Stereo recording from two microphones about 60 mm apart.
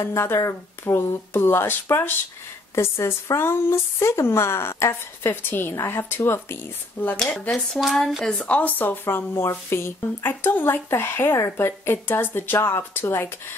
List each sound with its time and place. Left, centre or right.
0.0 s speech: left
7.9 s speech: centre
8.5 s speech: left
12.5 s speech: left